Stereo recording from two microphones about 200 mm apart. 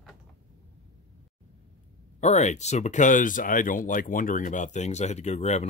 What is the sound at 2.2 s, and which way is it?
Speech, 35° left (ahead or behind).